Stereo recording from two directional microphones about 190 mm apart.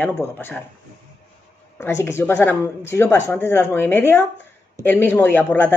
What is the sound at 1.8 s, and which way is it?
Speech, 15° left (ahead or behind).